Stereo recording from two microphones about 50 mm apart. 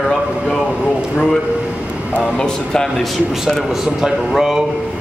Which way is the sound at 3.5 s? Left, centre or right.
Centre.